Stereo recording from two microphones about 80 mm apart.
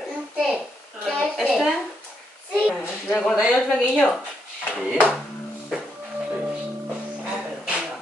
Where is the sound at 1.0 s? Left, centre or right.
Centre.